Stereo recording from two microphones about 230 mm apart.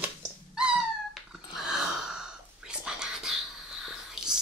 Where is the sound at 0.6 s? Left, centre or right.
Centre.